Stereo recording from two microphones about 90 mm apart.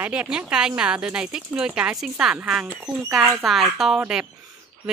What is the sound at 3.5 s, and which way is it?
Speech, centre (ahead or behind).